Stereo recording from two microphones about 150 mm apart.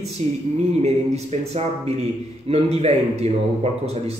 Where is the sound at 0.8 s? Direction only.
45° right (ahead or behind).